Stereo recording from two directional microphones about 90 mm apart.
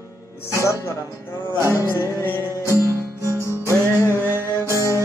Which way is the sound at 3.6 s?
30° left (ahead or behind).